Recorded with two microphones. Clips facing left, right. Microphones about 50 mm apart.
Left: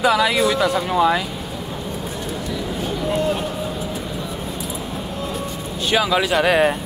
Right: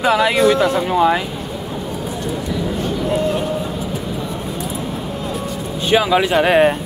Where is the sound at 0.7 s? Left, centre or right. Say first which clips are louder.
Right 2 dB; centre.